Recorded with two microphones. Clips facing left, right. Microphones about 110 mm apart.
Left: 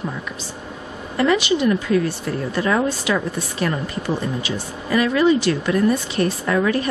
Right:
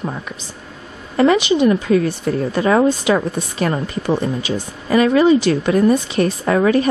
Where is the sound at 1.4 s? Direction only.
20° right (ahead or behind).